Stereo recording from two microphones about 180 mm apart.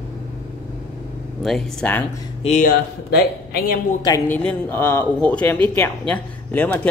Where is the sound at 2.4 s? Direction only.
40° left (ahead or behind).